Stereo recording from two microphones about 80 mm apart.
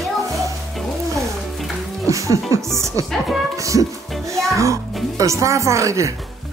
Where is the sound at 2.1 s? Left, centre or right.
Right.